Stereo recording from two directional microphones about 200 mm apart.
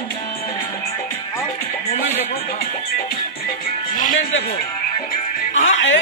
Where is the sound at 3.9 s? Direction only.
40° left (ahead or behind).